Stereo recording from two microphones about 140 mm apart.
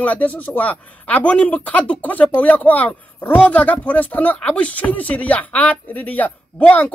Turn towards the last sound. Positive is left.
turn(degrees=10)  # may be behind; listen again after turning